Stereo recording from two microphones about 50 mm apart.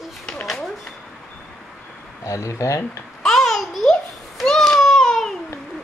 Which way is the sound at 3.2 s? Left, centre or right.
Centre.